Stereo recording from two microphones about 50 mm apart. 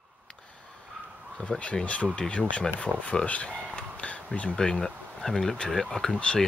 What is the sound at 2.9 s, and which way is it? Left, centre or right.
Speech, right.